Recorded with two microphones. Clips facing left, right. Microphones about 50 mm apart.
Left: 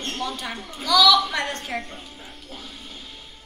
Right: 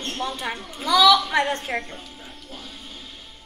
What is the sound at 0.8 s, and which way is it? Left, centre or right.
Speech, right.